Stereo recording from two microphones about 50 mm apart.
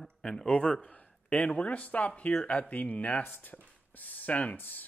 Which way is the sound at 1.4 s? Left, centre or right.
Left.